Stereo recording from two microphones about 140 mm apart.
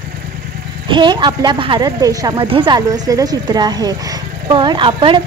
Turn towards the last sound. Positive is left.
turn(degrees=-35)  # may be behind; listen again after turning